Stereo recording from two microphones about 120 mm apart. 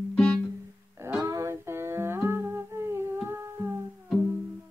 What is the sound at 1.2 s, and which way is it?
Humming, 25° right (ahead or behind).